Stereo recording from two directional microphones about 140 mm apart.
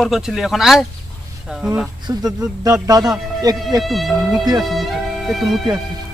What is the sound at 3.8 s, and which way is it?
Speech, centre (ahead or behind).